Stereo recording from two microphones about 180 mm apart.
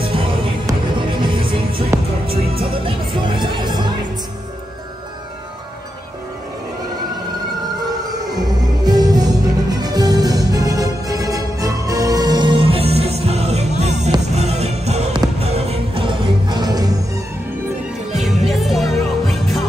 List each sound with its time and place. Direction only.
0.0 s music: 30° right (ahead or behind)
8.8 s music: 20° right (ahead or behind)
18.1 s music: centre (ahead or behind)